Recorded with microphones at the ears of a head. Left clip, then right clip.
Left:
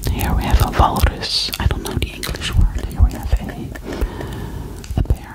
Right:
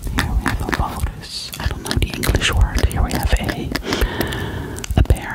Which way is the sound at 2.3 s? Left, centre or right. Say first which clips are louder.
Right 6 dB; right.